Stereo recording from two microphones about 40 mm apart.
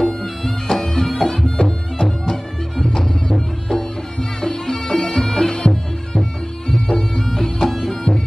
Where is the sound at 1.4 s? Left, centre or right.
Centre.